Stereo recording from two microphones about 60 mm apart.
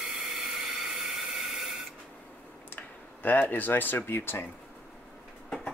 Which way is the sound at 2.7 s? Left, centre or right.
Left.